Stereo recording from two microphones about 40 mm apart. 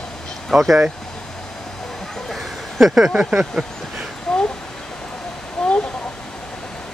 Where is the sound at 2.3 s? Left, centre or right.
Centre.